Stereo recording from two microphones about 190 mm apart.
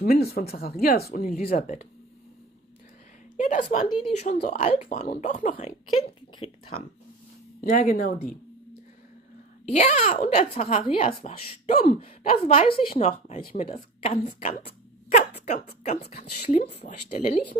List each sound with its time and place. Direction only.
0.0 s speech: 55° left (ahead or behind)
3.3 s a woman's voice: 40° left (ahead or behind)
3.8 s speech: 30° left (ahead or behind)
7.7 s speech: 45° left (ahead or behind)
9.7 s speech: 35° left (ahead or behind)